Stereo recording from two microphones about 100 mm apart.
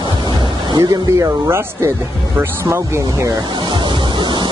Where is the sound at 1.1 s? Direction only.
25° right (ahead or behind).